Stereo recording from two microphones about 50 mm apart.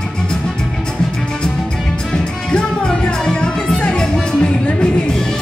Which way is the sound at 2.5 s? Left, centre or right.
Centre.